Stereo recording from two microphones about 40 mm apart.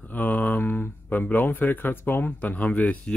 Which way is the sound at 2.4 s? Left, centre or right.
Left.